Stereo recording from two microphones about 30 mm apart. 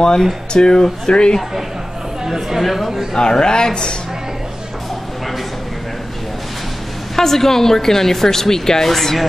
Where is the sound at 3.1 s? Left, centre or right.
Left.